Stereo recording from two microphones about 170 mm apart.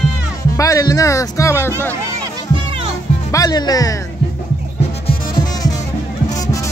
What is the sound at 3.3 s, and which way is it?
Speech, 20° left (ahead or behind).